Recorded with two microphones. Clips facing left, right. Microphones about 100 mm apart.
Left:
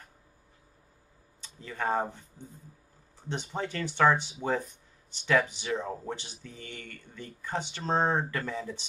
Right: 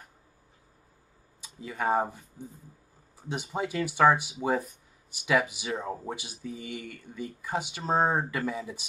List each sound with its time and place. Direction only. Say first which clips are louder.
1.4 s speech: right 2 dB; 10° right (ahead or behind)